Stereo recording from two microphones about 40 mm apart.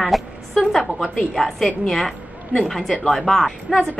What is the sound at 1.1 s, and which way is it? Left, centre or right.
A woman's voice, centre.